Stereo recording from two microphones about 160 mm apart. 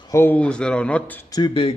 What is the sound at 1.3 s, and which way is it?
Speech, 30° left (ahead or behind).